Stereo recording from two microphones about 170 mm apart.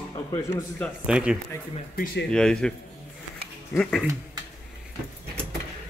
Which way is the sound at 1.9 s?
60° left (ahead or behind).